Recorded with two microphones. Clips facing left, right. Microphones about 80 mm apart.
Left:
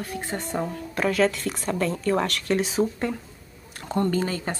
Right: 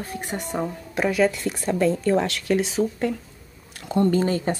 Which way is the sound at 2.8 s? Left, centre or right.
Left.